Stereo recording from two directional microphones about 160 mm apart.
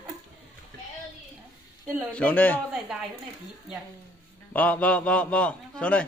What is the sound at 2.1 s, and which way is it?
Speech, 10° left (ahead or behind).